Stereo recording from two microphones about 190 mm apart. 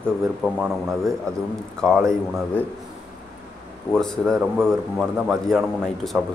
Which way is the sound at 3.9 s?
5° left (ahead or behind).